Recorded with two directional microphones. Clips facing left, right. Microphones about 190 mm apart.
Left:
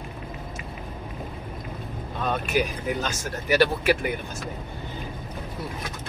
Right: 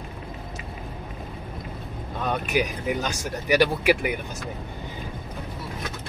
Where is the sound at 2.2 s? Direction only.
15° right (ahead or behind).